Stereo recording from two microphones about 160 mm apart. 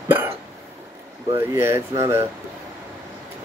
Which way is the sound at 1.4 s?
15° right (ahead or behind).